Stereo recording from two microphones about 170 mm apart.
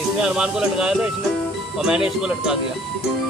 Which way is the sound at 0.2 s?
5° right (ahead or behind).